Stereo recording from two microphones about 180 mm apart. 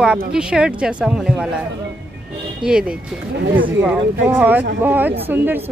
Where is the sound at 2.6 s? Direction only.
5° right (ahead or behind).